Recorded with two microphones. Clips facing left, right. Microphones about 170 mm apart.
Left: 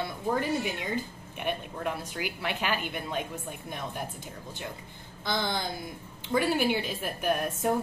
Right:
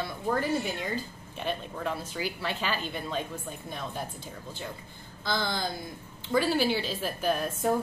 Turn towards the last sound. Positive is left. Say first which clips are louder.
# even
turn(degrees=10)  # may be behind; listen again after turning